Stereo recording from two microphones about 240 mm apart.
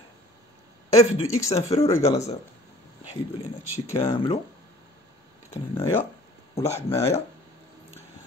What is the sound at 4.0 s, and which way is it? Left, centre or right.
Speech, left.